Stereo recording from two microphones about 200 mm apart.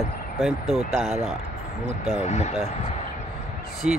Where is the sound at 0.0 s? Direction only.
Centre (ahead or behind).